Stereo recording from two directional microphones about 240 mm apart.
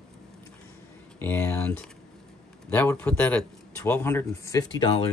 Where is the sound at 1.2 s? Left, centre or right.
Centre.